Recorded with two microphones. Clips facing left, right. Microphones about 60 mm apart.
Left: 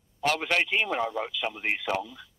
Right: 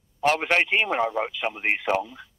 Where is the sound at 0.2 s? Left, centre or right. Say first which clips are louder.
Right 4 dB; right.